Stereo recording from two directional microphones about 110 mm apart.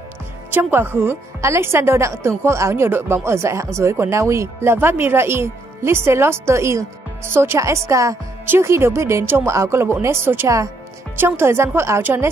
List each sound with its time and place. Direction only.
0.5 s a woman's voice: 20° right (ahead or behind)